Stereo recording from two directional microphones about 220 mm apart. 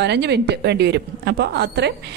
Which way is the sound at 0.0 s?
50° right (ahead or behind).